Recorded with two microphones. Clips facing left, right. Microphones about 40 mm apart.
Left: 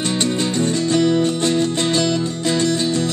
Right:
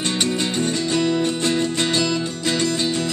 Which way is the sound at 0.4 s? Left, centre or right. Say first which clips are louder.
Left 3 dB; right.